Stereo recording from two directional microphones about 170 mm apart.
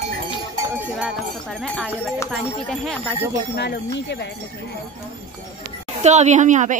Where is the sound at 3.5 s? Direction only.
80° left.